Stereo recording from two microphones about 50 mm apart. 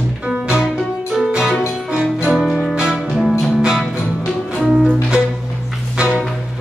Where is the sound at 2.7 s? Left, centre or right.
Centre.